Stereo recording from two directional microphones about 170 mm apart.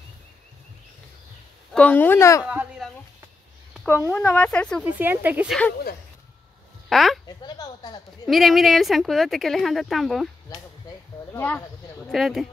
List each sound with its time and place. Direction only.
1.7 s speech: 10° left (ahead or behind)
2.4 s a sound: 5° right (ahead or behind)
4.1 s speech: 10° left (ahead or behind)
4.9 s speech: 10° right (ahead or behind)
6.9 s speech: centre (ahead or behind)
7.2 s a sound: 25° left (ahead or behind)
8.3 s speech: centre (ahead or behind)
11.3 s a sound: 10° left (ahead or behind)
12.1 s speech: centre (ahead or behind)